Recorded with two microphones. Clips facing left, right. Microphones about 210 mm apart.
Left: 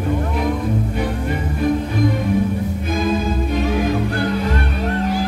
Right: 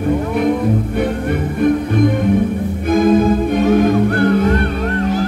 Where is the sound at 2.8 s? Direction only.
55° right (ahead or behind).